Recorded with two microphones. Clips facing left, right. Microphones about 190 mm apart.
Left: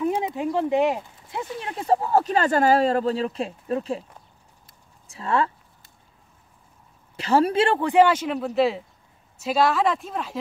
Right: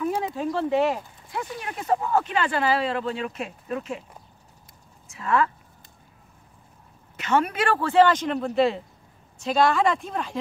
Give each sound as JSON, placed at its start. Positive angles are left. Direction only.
{"t": 0.0, "sound": "speech", "side_deg": 20}
{"t": 5.0, "sound": "speech", "side_deg": 30}
{"t": 7.2, "sound": "a woman's voice", "side_deg": 30}